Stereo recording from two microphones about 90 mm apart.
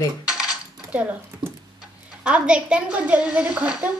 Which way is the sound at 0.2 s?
10° right (ahead or behind).